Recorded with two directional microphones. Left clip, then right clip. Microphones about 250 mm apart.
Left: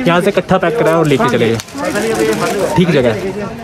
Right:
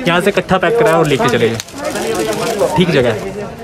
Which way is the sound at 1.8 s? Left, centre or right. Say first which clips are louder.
Left 2 dB; left.